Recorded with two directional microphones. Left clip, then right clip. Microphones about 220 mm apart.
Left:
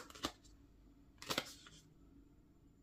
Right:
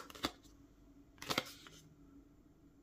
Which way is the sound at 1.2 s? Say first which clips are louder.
Right 3 dB; 10° right (ahead or behind).